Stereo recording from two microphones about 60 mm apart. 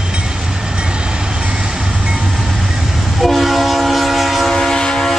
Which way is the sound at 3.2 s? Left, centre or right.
Centre.